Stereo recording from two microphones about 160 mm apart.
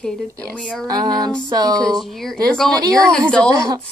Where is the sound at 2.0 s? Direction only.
Centre (ahead or behind).